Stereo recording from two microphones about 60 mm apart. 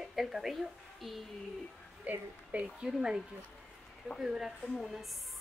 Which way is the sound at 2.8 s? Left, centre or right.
Centre.